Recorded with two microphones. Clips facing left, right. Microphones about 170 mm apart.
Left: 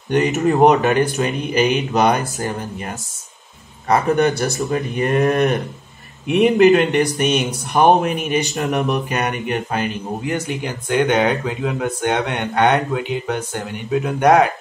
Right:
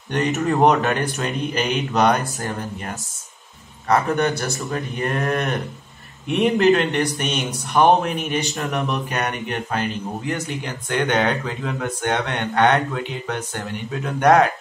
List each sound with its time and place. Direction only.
0.1 s speech: 15° left (ahead or behind)
3.8 s speech: 15° left (ahead or behind)